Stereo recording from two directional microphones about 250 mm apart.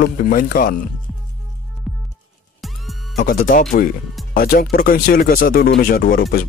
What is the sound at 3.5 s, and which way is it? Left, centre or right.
Speech, left.